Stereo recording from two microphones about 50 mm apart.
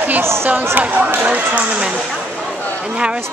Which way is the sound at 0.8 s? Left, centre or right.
Right.